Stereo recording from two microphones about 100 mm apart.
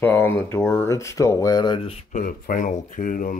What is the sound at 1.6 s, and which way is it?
Speech, 50° left (ahead or behind).